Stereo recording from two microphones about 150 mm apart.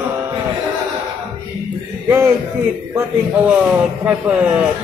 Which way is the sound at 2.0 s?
15° right (ahead or behind).